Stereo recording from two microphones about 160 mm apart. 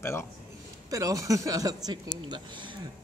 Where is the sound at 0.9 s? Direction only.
20° right (ahead or behind).